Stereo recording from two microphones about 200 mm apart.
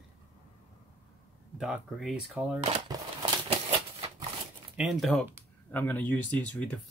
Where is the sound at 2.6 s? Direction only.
25° right (ahead or behind).